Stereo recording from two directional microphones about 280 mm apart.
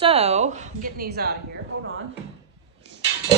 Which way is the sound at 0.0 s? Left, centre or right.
Right.